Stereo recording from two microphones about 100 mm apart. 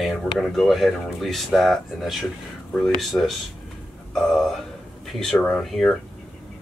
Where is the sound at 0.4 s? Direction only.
5° left (ahead or behind).